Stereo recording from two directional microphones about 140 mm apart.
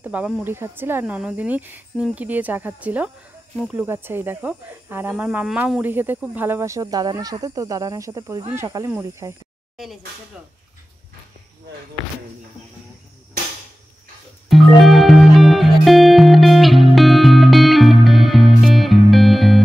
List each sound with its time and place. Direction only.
0.0 s speech: 10° right (ahead or behind)
14.5 s music: centre (ahead or behind)